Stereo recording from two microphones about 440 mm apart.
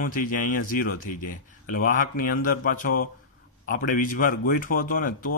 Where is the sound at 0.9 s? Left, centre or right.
Left.